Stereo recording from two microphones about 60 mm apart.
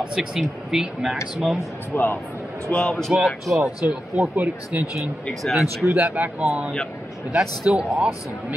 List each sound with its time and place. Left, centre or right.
0.0 s speech: centre
1.9 s a man's voice: left
3.1 s speech: centre
3.8 s speech: centre
4.7 s speech: right
5.4 s speech: centre
5.9 s speech: right
7.7 s speech: right